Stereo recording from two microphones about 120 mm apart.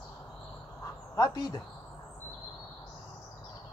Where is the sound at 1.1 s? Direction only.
35° left (ahead or behind).